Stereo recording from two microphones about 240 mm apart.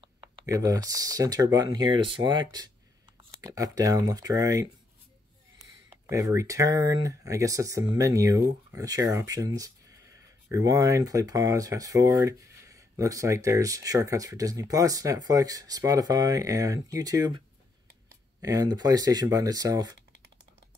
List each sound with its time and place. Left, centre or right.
0.0 s speech: centre
6.0 s speech: centre
18.4 s speech: centre